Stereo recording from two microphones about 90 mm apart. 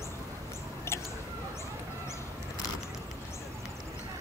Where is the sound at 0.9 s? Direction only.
30° left (ahead or behind).